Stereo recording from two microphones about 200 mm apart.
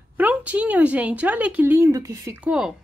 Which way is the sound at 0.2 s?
5° right (ahead or behind).